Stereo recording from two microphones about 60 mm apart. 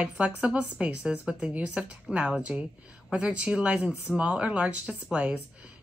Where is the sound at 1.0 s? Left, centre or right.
Centre.